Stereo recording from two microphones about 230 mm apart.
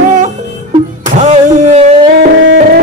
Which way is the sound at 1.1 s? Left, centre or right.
Right.